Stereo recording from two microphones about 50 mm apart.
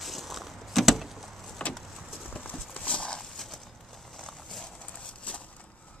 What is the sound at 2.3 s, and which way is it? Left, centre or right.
Clip-clop, left.